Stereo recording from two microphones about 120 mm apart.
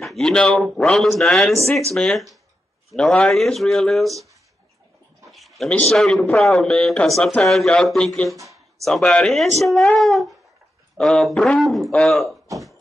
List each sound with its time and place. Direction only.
0.0 s speech: centre (ahead or behind)
5.3 s speech: centre (ahead or behind)
8.4 s a sound: 25° right (ahead or behind)
8.8 s speech: 5° left (ahead or behind)